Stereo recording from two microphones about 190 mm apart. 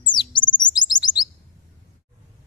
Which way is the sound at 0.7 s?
20° left (ahead or behind).